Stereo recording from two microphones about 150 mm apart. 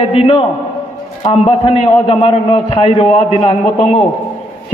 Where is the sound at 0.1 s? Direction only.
40° left (ahead or behind).